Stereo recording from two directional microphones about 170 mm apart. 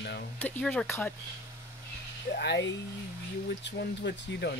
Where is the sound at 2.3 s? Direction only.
90° left.